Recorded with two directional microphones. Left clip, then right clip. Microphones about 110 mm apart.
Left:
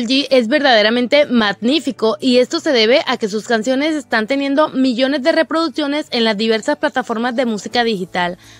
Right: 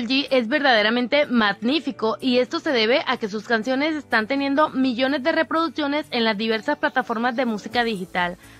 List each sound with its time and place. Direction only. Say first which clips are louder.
0.1 s speech: left 7 dB; 35° left (ahead or behind)